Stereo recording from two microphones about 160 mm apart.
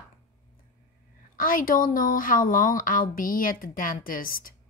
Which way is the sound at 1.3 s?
60° left (ahead or behind).